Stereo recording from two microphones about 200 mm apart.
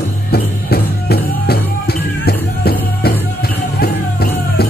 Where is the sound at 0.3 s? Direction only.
50° left (ahead or behind).